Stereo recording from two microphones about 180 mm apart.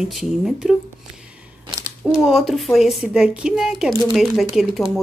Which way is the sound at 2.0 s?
Centre (ahead or behind).